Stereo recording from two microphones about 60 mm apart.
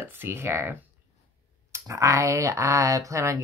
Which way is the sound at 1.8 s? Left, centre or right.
Right.